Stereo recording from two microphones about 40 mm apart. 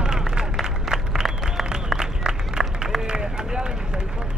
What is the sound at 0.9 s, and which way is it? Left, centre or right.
Applause, centre.